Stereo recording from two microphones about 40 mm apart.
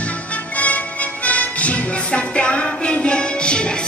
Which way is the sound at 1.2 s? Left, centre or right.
Left.